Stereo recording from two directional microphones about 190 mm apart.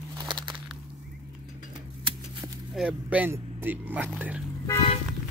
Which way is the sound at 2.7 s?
5° right (ahead or behind).